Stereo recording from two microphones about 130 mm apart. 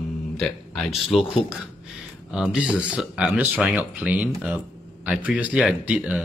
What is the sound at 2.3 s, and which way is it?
Speech, 5° right (ahead or behind).